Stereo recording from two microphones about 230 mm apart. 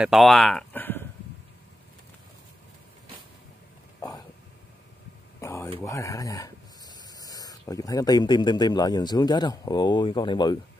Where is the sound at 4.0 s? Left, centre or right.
Centre.